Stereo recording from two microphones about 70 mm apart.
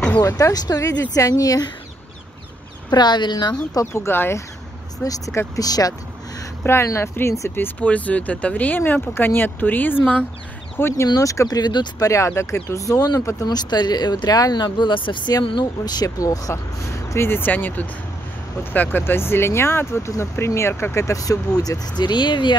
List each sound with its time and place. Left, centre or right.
0.2 s speech: left
2.9 s speech: left
3.8 s speech: left
5.0 s speech: left
6.6 s speech: left
7.5 s speech: left
10.8 s speech: left
11.1 s speech: left
12.1 s speech: left
13.5 s speech: left